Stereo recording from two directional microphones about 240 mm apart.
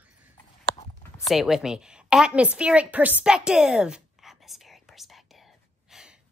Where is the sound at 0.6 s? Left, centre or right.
Left.